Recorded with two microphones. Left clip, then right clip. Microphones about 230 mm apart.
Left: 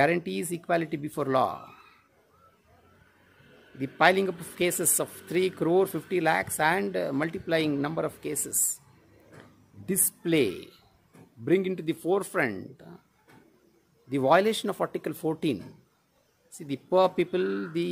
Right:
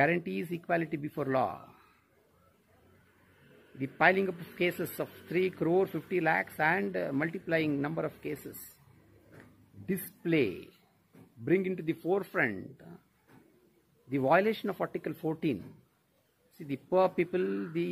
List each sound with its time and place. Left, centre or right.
0.0 s speech: centre
3.8 s speech: centre
9.8 s speech: left
14.0 s speech: centre